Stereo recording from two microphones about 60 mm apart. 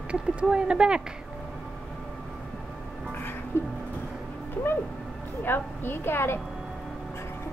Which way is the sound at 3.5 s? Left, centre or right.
Left.